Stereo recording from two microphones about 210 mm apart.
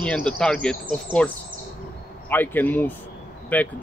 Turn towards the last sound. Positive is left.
turn(degrees=5)  # may be behind; listen again after turning